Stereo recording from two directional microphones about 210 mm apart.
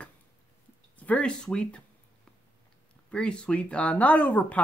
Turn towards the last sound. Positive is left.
turn(degrees=5)  # may be behind; listen again after turning